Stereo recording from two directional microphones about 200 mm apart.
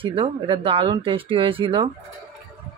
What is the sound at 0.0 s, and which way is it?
Speech, 25° right (ahead or behind).